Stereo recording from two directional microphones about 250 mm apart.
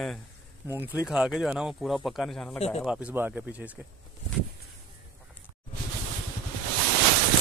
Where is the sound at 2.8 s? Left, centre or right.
Centre.